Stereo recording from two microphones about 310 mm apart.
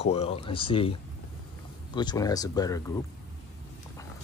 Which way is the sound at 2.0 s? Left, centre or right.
Centre.